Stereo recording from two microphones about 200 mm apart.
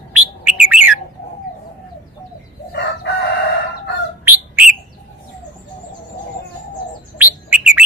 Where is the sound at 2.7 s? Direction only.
55° left (ahead or behind).